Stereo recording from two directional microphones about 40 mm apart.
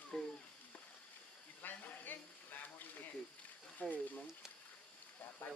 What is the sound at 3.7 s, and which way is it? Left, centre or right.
Speech, left.